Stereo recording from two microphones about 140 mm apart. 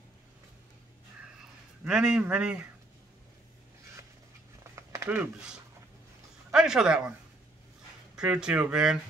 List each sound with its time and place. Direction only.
1.4 s speech: 5° right (ahead or behind)
4.7 s speech: 20° right (ahead or behind)
8.2 s speech: 5° right (ahead or behind)